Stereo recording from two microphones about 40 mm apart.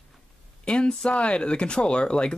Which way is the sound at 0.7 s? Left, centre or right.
Left.